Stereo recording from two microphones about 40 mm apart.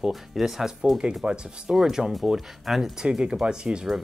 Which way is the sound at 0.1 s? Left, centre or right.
Centre.